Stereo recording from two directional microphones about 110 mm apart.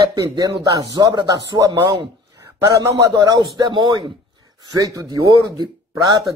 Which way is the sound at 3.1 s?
40° right (ahead or behind).